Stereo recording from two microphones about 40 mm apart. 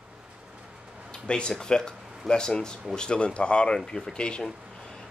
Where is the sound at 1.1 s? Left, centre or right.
Left.